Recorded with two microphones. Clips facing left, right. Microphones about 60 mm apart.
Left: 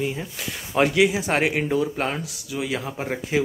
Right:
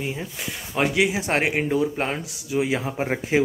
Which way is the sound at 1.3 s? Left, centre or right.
Centre.